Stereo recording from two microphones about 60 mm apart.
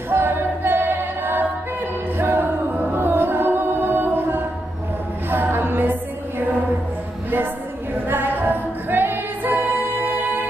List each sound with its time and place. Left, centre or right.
0.1 s singing: right
2.1 s music: right
7.9 s music: right